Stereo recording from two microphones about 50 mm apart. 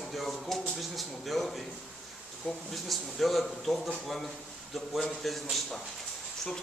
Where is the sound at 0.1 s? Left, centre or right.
Centre.